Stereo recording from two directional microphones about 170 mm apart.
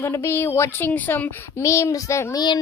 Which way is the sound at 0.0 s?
15° left (ahead or behind).